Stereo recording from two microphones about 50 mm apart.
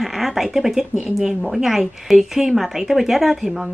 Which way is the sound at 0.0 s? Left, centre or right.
Centre.